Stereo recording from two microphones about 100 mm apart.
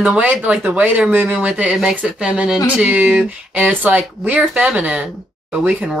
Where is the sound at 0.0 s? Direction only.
10° right (ahead or behind).